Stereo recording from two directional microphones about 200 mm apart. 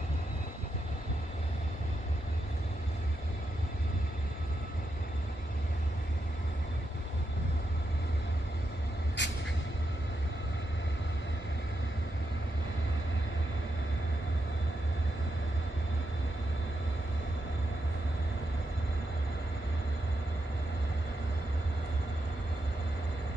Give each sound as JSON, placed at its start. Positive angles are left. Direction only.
{"t": 9.2, "sound": "vehicle", "side_deg": 60}